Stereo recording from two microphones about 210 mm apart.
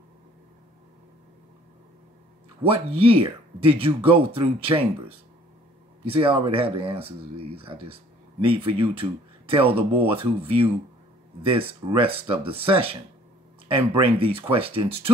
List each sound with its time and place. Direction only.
2.6 s speech: 25° right (ahead or behind)
6.0 s speech: 25° right (ahead or behind)